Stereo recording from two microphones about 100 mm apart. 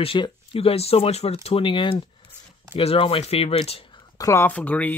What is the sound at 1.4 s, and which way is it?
Speech, 65° left (ahead or behind).